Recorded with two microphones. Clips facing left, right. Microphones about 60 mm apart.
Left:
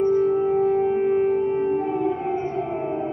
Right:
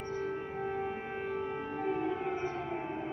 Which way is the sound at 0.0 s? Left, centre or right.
Left.